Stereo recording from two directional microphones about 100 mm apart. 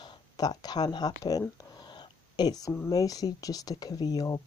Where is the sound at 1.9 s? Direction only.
40° left (ahead or behind).